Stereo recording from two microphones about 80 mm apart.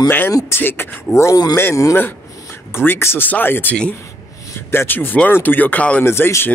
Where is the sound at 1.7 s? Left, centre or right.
Left.